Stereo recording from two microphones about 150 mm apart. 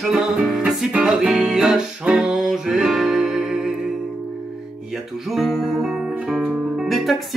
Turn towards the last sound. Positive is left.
turn(degrees=0)  # may be behind; listen again after turning